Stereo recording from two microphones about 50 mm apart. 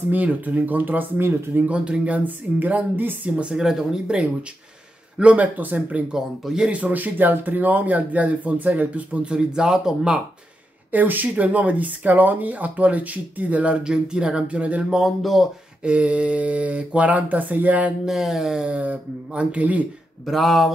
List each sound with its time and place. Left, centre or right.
0.1 s speech: right
1.6 s speech: right
3.3 s speech: right
3.5 s speech: centre
5.2 s speech: right
6.1 s speech: centre
6.7 s speech: right; by 10.2 s centre
10.9 s speech: right
13.8 s speech: centre
14.9 s speech: centre
15.8 s speech: right
18.0 s speech: centre
18.7 s speech: right
20.2 s speech: centre